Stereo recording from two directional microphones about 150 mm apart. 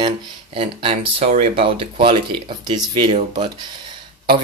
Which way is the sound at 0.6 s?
35° right (ahead or behind).